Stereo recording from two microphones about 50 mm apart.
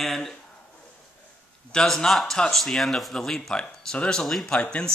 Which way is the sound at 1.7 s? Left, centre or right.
Centre.